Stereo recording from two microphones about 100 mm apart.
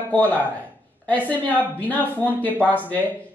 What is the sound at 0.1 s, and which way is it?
Speech, 15° left (ahead or behind).